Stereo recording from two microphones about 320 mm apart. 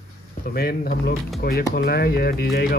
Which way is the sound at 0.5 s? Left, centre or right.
Left.